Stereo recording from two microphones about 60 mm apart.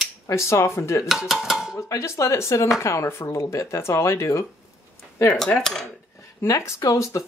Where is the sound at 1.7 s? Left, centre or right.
Left.